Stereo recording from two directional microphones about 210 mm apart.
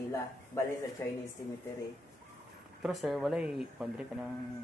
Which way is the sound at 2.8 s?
Centre (ahead or behind).